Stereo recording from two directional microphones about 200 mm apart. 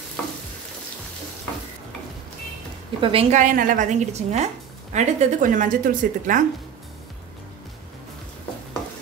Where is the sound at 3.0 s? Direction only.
30° right (ahead or behind).